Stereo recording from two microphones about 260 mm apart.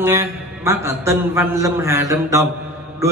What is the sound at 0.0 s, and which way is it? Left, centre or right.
A man's voice, centre.